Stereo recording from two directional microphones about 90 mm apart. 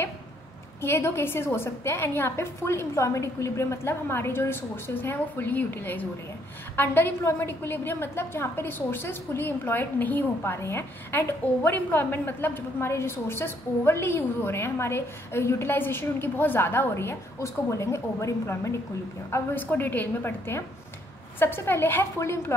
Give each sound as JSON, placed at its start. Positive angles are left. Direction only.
{"t": 0.7, "sound": "a woman's voice", "side_deg": 25}
{"t": 19.3, "sound": "a woman's voice", "side_deg": 20}